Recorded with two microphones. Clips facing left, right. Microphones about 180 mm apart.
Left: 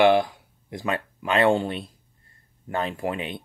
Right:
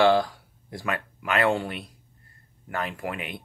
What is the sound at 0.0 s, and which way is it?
Speech, 15° left (ahead or behind).